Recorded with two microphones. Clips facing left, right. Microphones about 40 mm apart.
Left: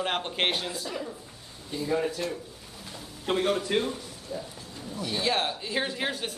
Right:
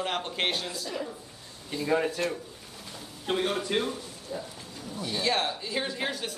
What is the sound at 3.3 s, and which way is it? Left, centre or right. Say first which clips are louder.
Speech: left 2 dB; centre.